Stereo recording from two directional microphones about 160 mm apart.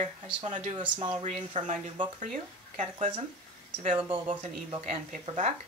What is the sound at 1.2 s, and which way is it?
Speech, 45° right (ahead or behind).